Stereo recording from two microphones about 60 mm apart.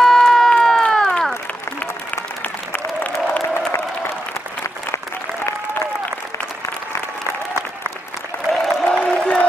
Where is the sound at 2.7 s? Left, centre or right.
Left.